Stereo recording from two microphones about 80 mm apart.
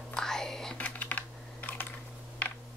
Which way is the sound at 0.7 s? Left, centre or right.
Centre.